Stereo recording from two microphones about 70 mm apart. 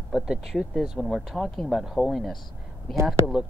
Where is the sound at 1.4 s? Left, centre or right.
Centre.